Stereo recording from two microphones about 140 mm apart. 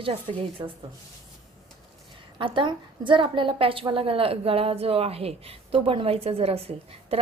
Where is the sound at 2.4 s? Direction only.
35° right (ahead or behind).